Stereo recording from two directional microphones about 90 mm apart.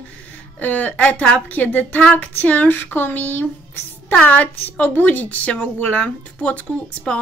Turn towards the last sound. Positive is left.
turn(degrees=15)  # may be behind; listen again after turning